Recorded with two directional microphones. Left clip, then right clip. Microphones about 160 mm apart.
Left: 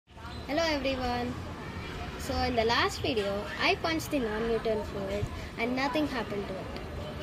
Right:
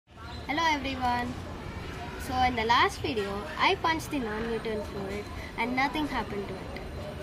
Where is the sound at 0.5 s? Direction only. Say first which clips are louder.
Right 1 dB; 15° right (ahead or behind).